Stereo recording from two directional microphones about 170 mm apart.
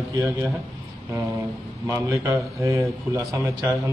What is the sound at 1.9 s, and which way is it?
A man's voice, 15° right (ahead or behind).